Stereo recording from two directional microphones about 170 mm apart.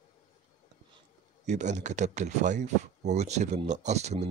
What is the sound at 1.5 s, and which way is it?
Speech, 45° right (ahead or behind).